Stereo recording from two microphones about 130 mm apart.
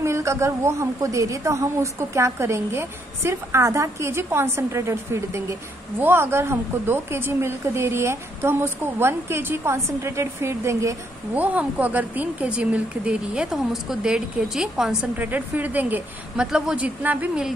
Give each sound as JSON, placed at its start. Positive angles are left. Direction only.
{"t": 0.0, "sound": "a woman's voice", "side_deg": -20}
{"t": 11.3, "sound": "speech", "side_deg": -10}